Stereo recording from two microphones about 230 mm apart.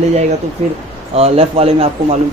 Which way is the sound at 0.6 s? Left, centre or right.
Right.